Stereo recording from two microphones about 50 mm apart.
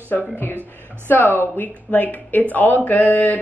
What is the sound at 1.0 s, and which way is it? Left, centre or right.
A woman's voice, left.